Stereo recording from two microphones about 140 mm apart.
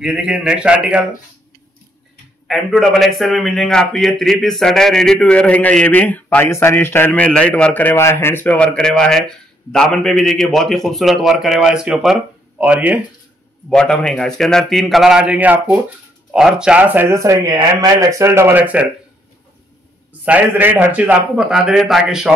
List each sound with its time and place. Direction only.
0.0 s speech: 5° right (ahead or behind)
2.4 s a man's voice: centre (ahead or behind)
13.7 s a man's voice: 5° left (ahead or behind); by 18.9 s 10° right (ahead or behind)
20.1 s a man's voice: 10° right (ahead or behind)